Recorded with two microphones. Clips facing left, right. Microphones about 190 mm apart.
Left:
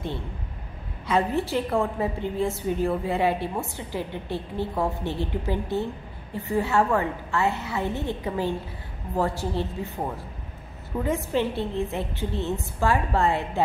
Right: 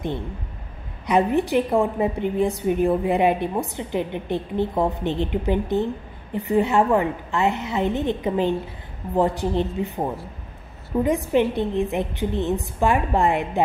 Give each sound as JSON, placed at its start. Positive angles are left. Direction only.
{"t": 1.0, "sound": "a woman's voice", "side_deg": -15}